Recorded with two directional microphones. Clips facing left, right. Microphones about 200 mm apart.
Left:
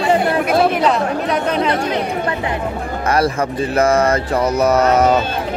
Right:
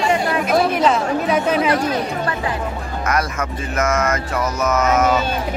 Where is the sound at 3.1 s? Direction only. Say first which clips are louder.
Left 6 dB; 30° left (ahead or behind).